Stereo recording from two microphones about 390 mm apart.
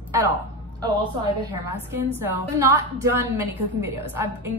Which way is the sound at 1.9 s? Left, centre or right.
Centre.